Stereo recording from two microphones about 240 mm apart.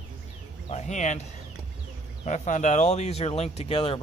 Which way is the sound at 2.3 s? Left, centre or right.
Left.